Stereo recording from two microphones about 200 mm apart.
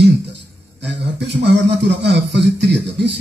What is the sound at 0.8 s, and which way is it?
Speech, 60° right (ahead or behind).